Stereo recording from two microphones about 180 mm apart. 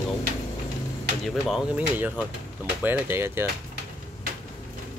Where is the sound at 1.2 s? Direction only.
Centre (ahead or behind).